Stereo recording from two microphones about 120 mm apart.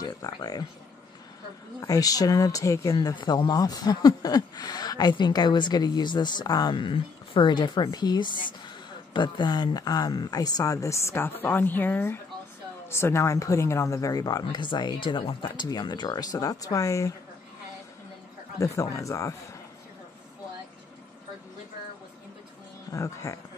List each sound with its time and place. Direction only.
0.0 s speech: 30° left (ahead or behind)
1.8 s speech: 30° left (ahead or behind)
18.6 s speech: 25° left (ahead or behind)
22.8 s speech: 25° left (ahead or behind)